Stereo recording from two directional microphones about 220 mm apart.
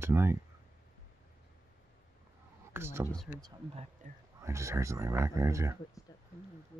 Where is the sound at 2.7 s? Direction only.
10° right (ahead or behind).